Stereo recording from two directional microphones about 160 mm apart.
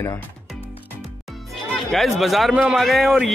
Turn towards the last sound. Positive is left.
turn(degrees=0)  # may be behind; listen again after turning